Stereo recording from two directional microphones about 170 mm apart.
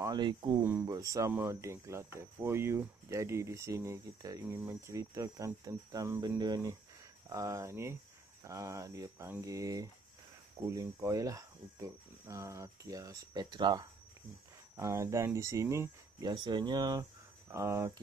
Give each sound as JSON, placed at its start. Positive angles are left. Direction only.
{"t": 0.0, "sound": "speech", "side_deg": -25}